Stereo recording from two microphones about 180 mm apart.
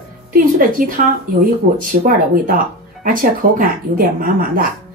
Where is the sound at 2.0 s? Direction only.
50° right (ahead or behind).